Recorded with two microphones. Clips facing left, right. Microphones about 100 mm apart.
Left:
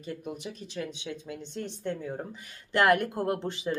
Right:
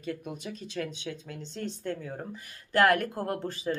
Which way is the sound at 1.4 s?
55° left (ahead or behind).